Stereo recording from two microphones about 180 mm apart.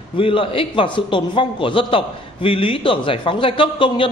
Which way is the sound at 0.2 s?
30° left (ahead or behind).